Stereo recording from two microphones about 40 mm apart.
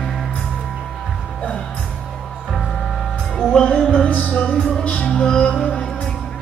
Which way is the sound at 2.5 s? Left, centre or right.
Centre.